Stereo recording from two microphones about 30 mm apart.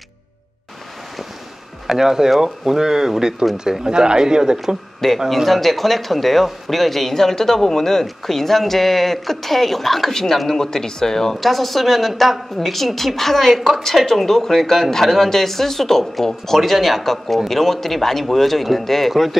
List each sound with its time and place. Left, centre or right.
1.9 s speech: centre
5.0 s speech: centre
5.5 s speech: centre
10.6 s speech: centre
11.3 s a woman's voice: centre